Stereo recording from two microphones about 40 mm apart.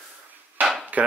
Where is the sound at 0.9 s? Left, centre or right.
Right.